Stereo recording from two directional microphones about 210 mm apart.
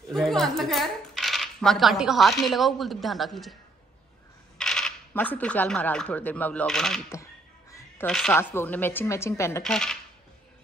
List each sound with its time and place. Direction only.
0.1 s speech: centre (ahead or behind)
4.6 s speech: 5° left (ahead or behind)
9.6 s speech: 5° left (ahead or behind)